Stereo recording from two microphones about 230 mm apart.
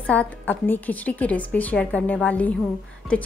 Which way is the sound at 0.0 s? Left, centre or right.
Centre.